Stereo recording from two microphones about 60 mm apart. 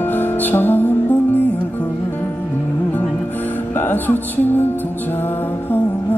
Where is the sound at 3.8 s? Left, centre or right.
Left.